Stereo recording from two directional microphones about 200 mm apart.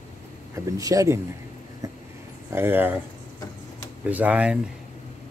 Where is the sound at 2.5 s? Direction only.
10° right (ahead or behind).